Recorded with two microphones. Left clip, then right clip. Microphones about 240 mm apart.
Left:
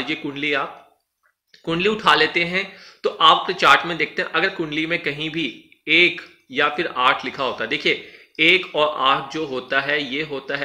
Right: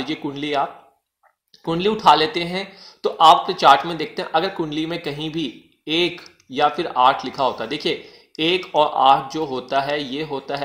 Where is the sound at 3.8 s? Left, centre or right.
Centre.